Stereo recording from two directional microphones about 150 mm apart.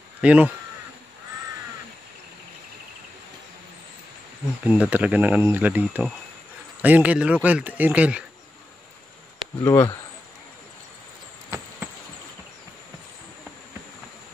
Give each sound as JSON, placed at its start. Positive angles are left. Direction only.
{"t": 0.2, "sound": "speech", "side_deg": -10}
{"t": 4.6, "sound": "speech", "side_deg": -10}
{"t": 9.6, "sound": "speech", "side_deg": 20}